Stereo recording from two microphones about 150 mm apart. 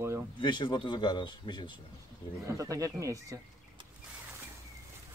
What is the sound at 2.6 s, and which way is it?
Speech, 20° right (ahead or behind).